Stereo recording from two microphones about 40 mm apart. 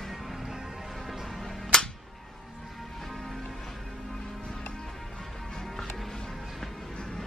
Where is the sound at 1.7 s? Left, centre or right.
Centre.